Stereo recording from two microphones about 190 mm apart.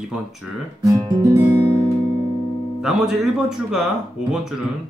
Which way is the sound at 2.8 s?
Centre (ahead or behind).